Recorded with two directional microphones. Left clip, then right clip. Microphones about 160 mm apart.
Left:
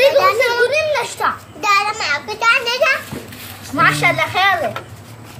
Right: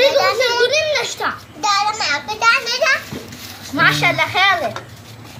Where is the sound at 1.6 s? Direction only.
40° left (ahead or behind).